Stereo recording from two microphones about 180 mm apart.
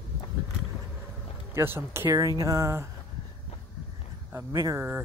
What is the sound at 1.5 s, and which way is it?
Speech, 15° right (ahead or behind).